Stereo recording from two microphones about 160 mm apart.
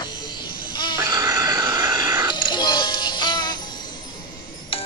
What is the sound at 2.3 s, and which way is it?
Music, 30° left (ahead or behind).